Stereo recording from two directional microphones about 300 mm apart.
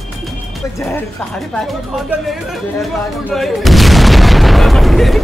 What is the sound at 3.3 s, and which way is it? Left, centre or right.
Speech, centre.